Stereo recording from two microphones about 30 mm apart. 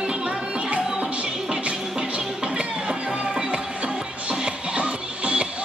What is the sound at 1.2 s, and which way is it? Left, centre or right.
Music, centre.